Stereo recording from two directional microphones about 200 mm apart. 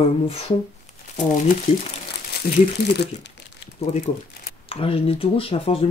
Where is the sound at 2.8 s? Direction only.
55° left (ahead or behind).